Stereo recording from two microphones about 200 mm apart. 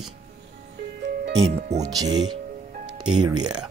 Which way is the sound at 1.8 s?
20° right (ahead or behind).